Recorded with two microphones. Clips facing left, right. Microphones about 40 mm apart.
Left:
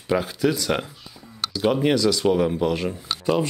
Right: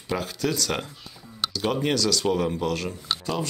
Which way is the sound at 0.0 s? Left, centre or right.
Centre.